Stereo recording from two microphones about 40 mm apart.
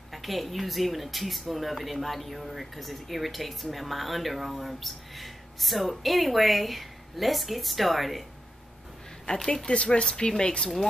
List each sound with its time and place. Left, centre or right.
0.1 s speech: centre
9.4 s speech: centre
9.7 s speech: left